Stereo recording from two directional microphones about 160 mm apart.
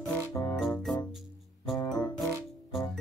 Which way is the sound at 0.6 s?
Centre (ahead or behind).